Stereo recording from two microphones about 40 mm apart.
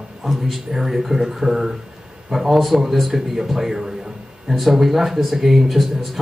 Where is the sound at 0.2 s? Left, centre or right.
Centre.